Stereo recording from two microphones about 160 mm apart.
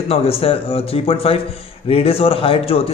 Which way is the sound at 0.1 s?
35° left (ahead or behind).